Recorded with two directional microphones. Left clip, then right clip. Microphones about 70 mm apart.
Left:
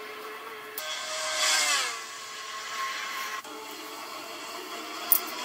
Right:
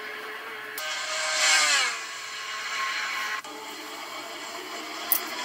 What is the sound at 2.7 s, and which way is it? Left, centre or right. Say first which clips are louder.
Helicopter: right 4 dB; right.